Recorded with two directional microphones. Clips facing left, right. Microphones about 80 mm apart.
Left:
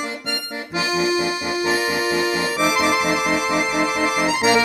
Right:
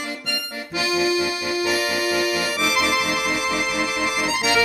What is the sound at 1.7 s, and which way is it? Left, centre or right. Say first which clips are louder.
Music: left 3 dB; left.